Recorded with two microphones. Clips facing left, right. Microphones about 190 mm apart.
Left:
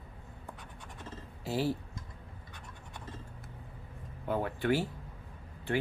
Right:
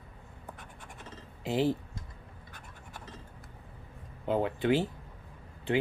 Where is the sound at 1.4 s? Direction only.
20° right (ahead or behind).